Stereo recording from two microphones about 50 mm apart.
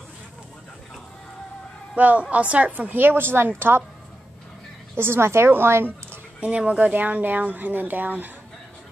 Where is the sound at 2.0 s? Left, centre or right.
Right.